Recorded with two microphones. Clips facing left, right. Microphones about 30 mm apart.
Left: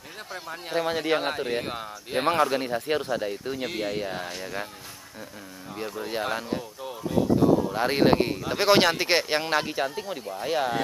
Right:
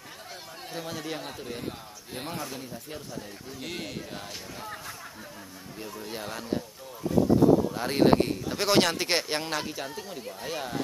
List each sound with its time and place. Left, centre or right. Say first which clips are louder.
0.5 s a man's voice: left 11 dB; left
3.6 s speech: left 5 dB; centre
4.1 s speech: left 7 dB; left
5.8 s speech: left 7 dB; left
7.7 s speech: left 1 dB; left